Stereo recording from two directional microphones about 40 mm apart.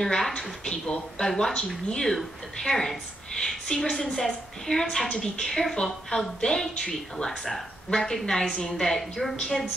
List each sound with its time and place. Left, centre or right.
0.0 s a woman's voice: centre